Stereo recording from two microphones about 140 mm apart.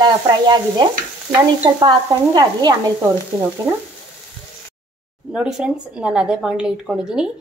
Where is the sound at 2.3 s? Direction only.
30° right (ahead or behind).